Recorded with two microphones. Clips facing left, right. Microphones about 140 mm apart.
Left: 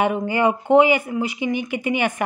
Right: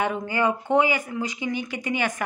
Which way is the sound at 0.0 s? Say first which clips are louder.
Left 5 dB; 15° left (ahead or behind).